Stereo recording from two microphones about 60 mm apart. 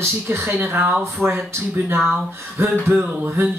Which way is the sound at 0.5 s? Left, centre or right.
Right.